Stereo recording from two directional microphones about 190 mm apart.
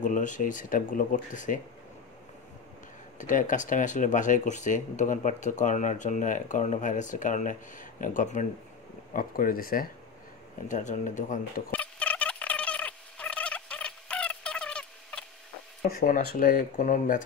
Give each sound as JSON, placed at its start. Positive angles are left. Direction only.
{"t": 0.0, "sound": "speech", "side_deg": 40}
{"t": 3.2, "sound": "speech", "side_deg": 45}
{"t": 11.7, "sound": "turkey", "side_deg": 5}
{"t": 15.9, "sound": "speech", "side_deg": 45}